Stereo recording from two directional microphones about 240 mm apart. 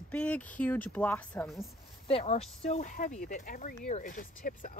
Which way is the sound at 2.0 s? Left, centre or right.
Left.